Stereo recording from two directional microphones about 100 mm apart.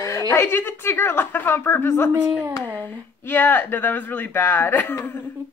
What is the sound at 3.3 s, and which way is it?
A woman's voice, 20° left (ahead or behind).